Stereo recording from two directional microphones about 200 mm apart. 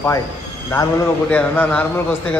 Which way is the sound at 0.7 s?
15° left (ahead or behind).